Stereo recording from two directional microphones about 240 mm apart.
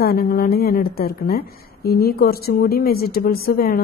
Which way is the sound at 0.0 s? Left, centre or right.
Left.